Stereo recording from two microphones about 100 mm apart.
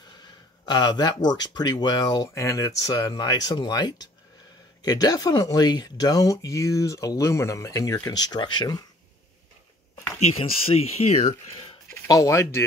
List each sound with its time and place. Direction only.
0.2 s speech: 45° left (ahead or behind)
10.2 s speech: 75° left (ahead or behind); by 11.2 s 90° left
11.9 s speech: 30° left (ahead or behind)